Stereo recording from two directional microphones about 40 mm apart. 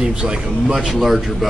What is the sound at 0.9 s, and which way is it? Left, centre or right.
Speech, centre.